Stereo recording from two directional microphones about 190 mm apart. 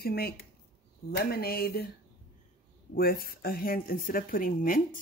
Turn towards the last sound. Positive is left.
turn(degrees=45)  # may be behind; listen again after turning